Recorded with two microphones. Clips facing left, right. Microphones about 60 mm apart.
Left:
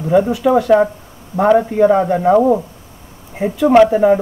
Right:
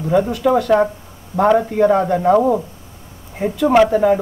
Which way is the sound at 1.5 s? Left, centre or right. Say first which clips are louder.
Left 3 dB; centre.